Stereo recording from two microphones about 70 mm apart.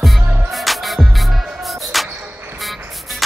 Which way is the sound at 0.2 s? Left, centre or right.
Right.